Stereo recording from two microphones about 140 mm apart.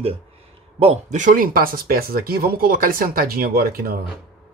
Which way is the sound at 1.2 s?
80° right.